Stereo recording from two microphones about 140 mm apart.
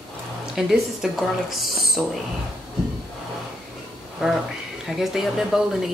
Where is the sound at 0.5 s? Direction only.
Centre (ahead or behind).